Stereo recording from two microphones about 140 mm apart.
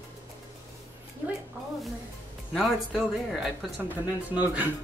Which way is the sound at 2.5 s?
Centre (ahead or behind).